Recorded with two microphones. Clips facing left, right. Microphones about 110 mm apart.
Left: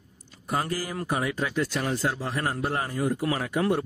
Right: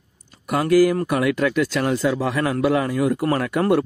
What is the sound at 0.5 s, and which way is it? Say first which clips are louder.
A man's voice: right 13 dB; 80° right.